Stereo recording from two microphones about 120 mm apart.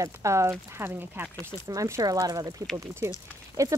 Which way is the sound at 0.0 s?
25° right (ahead or behind).